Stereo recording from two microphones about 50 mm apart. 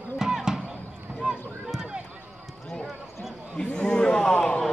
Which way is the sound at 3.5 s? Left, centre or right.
Centre.